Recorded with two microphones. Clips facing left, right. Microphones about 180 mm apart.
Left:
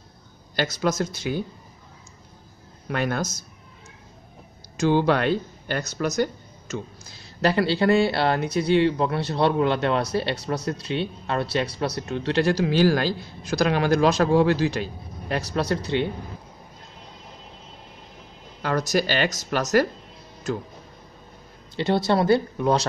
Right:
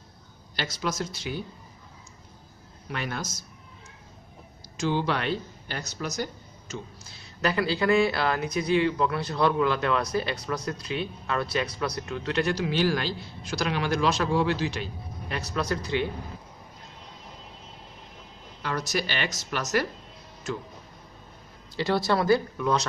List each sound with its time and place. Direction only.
0.6 s speech: 45° left (ahead or behind)
2.9 s speech: 50° left (ahead or behind)
4.7 s speech: 50° left (ahead or behind)
7.4 s a man's voice: 30° left (ahead or behind)
15.5 s speech: 30° left (ahead or behind)
18.6 s a man's voice: 45° left (ahead or behind)
21.7 s speech: 25° left (ahead or behind)